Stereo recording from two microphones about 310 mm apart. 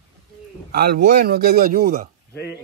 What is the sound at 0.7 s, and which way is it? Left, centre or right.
A man's voice, right.